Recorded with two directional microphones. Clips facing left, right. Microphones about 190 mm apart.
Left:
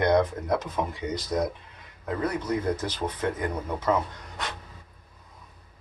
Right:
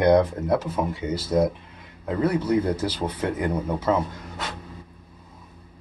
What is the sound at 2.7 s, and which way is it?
Speech, 10° right (ahead or behind).